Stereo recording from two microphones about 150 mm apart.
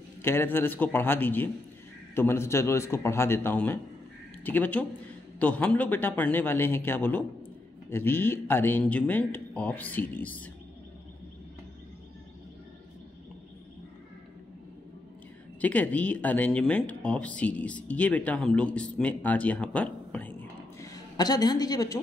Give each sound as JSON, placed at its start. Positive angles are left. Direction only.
{"t": 0.2, "sound": "speech", "side_deg": 15}
{"t": 15.6, "sound": "speech", "side_deg": 10}
{"t": 20.8, "sound": "a woman's voice", "side_deg": 25}